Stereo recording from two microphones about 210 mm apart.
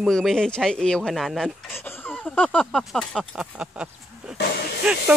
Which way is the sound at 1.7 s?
10° left (ahead or behind).